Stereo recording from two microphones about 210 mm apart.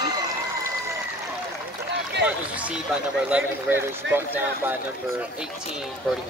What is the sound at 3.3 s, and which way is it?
A man's voice, 10° right (ahead or behind).